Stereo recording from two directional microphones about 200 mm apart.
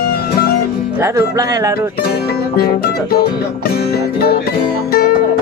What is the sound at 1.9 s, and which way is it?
Music, 50° left (ahead or behind).